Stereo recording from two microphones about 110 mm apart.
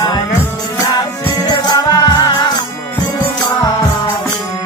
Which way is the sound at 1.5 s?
40° left (ahead or behind).